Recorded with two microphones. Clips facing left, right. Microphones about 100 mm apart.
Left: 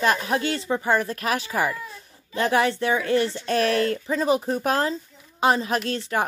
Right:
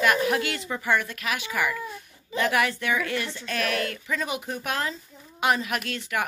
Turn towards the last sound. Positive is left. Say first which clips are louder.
# left 5 dB
turn(degrees=30)  # may be behind; listen again after turning